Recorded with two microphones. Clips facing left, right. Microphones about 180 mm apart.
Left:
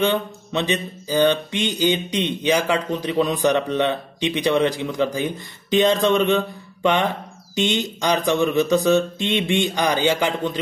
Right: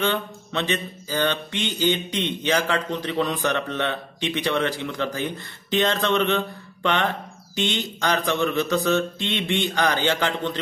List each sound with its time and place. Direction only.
0.0 s a man's voice: 15° left (ahead or behind)